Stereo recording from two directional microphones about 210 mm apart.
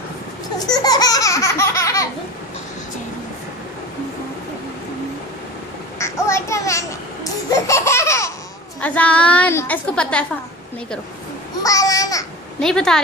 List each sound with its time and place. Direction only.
0.6 s a sound: 20° left (ahead or behind)
5.9 s a sound: 15° left (ahead or behind)
7.5 s laughter: 15° left (ahead or behind)
8.8 s a woman's voice: 5° left (ahead or behind)
11.6 s a child's voice: 15° left (ahead or behind)
12.5 s speech: 5° left (ahead or behind)